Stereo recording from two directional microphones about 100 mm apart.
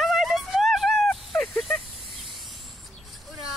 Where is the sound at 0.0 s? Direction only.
Centre (ahead or behind).